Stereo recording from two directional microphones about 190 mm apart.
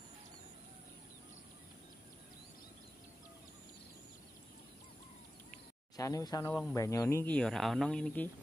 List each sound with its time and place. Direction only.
5.9 s speech: 20° left (ahead or behind)